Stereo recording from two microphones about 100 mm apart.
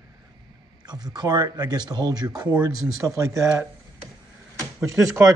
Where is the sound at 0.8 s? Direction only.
45° right (ahead or behind).